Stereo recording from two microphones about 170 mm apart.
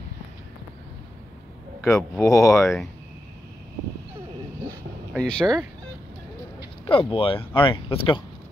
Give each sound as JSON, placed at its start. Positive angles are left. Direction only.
{"t": 1.9, "sound": "speech", "side_deg": 15}
{"t": 5.1, "sound": "speech", "side_deg": 5}
{"t": 6.9, "sound": "speech", "side_deg": 35}